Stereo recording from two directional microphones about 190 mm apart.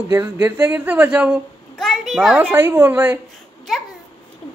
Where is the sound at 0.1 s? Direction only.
10° right (ahead or behind).